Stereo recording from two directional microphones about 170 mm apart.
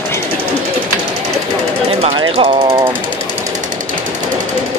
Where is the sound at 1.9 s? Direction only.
35° right (ahead or behind).